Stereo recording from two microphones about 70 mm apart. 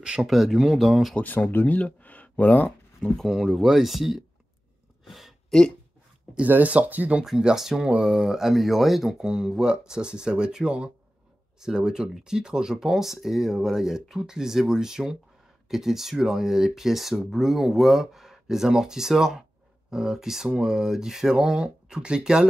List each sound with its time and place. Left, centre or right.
0.0 s speech: centre
1.2 s speech: left
3.0 s speech: centre
5.0 s a sound: centre
6.3 s speech: right
7.2 s speech: centre